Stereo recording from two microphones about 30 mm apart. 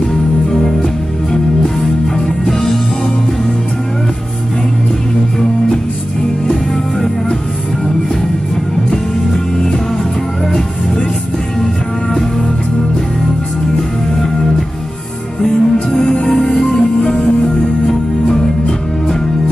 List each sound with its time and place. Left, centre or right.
2.1 s music: centre
15.4 s music: left